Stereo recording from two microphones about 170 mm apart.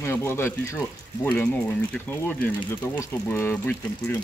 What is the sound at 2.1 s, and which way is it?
Speech, 10° left (ahead or behind).